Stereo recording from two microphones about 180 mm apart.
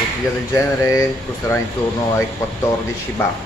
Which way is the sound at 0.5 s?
15° left (ahead or behind).